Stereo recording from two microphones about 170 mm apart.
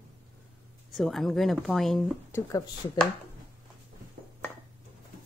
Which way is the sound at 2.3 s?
20° left (ahead or behind).